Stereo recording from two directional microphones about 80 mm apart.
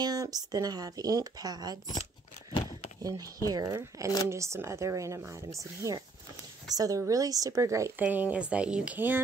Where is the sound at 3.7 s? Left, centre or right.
Right.